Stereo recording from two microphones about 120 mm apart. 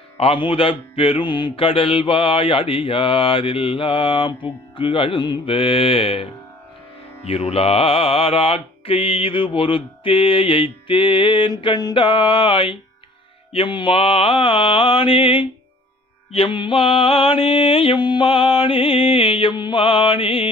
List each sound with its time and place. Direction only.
0.2 s mantra: 50° left (ahead or behind)
7.2 s mantra: 60° left (ahead or behind)